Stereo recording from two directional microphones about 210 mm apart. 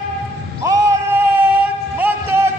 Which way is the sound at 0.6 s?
15° right (ahead or behind).